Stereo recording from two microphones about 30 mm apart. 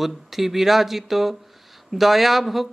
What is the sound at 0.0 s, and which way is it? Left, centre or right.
Speech, centre.